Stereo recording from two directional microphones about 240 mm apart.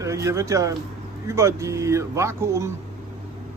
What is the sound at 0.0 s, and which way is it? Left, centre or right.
Speech, centre.